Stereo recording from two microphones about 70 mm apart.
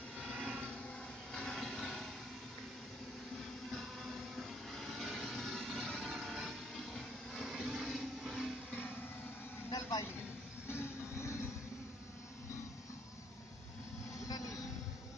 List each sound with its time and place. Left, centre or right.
0.2 s vehicle: centre
3.7 s vehicle: centre
9.7 s vehicle: left
10.7 s vehicle: left